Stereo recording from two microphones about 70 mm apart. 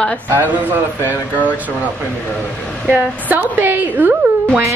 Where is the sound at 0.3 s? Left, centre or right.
Right.